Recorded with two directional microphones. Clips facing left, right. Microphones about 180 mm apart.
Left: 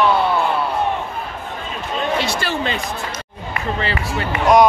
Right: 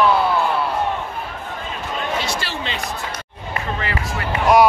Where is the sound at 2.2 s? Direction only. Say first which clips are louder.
Left 4 dB; 50° left (ahead or behind).